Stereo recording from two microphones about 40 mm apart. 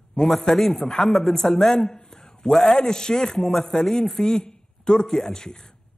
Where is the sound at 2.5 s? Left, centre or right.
Centre.